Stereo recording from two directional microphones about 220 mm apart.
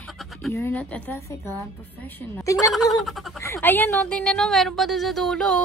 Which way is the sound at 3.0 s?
Centre (ahead or behind).